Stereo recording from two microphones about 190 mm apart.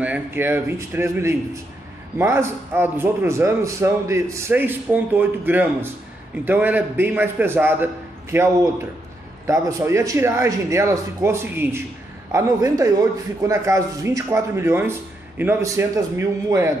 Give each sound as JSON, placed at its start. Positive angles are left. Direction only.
{"t": 0.0, "sound": "a man's voice", "side_deg": -10}
{"t": 9.5, "sound": "a man's voice", "side_deg": -15}